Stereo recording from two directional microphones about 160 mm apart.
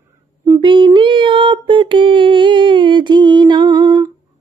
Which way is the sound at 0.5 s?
30° right (ahead or behind).